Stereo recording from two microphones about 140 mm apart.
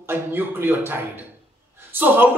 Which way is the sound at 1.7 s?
15° right (ahead or behind).